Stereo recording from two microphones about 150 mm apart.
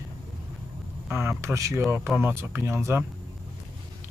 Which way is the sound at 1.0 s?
15° right (ahead or behind).